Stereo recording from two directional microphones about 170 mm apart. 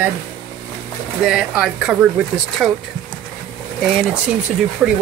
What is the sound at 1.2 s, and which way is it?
Speech, 5° right (ahead or behind).